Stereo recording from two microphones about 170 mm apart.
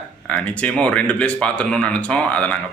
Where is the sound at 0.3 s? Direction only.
5° left (ahead or behind).